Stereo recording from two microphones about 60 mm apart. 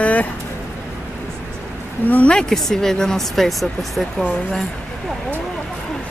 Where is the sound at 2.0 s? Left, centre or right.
Left.